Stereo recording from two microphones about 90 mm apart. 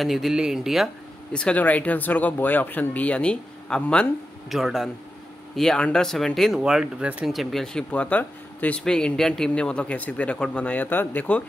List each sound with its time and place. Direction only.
0.0 s speech: 5° right (ahead or behind)
1.3 s speech: 15° left (ahead or behind)
4.5 s speech: centre (ahead or behind)
6.6 s speech: 10° right (ahead or behind)
7.2 s speech: centre (ahead or behind); by 11.4 s 20° left (ahead or behind)